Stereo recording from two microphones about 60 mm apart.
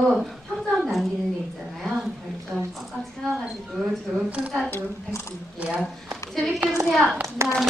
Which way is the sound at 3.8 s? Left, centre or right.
Centre.